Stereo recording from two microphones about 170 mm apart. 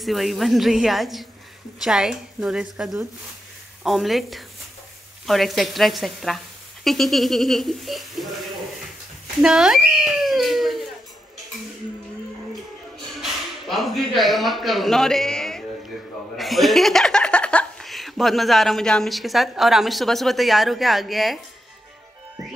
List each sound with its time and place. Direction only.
0.0 s speech: centre (ahead or behind)
9.4 s speech: 5° right (ahead or behind)
13.2 s speech: centre (ahead or behind)